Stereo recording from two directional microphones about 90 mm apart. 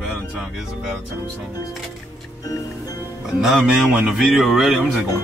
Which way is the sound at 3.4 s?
Centre (ahead or behind).